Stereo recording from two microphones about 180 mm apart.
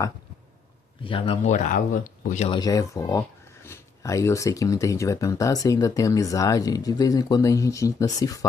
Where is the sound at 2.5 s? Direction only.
20° left (ahead or behind).